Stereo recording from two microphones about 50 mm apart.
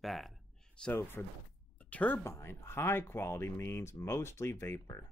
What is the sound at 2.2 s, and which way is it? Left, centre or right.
Speech, left.